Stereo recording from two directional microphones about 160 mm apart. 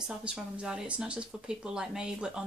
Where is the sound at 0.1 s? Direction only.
5° right (ahead or behind).